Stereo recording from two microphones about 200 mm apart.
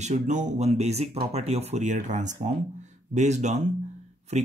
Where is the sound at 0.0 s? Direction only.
35° right (ahead or behind).